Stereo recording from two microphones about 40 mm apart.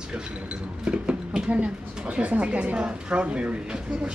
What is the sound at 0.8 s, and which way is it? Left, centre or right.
Speech, right.